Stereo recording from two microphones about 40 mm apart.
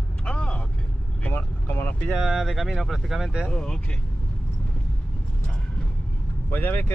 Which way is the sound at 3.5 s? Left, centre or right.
Left.